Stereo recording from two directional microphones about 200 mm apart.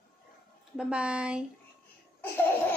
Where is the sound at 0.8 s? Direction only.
5° right (ahead or behind).